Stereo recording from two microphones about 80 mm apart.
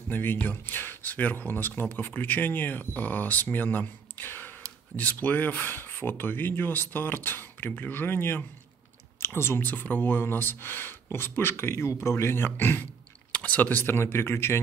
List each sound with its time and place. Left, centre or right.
0.1 s speech: left